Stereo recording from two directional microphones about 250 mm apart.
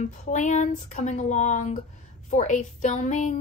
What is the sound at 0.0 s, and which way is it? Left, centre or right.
A woman's voice, left.